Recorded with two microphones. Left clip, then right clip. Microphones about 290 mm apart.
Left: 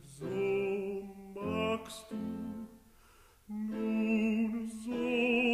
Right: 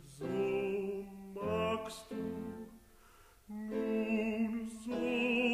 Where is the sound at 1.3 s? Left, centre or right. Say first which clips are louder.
Even; left.